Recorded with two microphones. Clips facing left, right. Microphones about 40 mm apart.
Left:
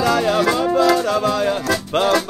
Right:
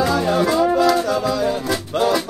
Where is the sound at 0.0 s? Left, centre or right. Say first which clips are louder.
Left 1 dB; left.